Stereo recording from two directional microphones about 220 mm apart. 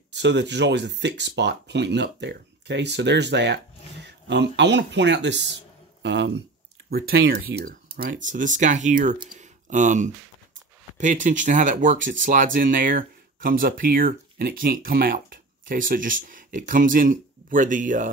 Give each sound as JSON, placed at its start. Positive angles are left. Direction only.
{"t": 0.1, "sound": "speech", "side_deg": -50}